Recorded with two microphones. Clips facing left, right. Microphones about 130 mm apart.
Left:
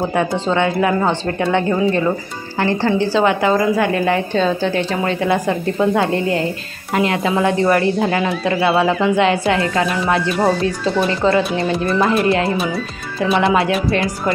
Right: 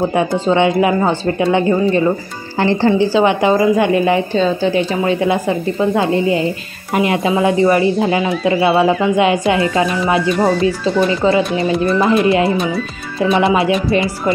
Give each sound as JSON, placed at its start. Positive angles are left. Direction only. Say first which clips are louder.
{"t": 0.1, "sound": "a woman's voice", "louder": "right 3 dB", "side_deg": -15}
{"t": 9.1, "sound": "a woman's voice", "louder": "right 2 dB", "side_deg": -15}